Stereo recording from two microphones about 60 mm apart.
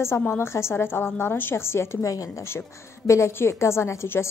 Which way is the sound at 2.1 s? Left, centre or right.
Left.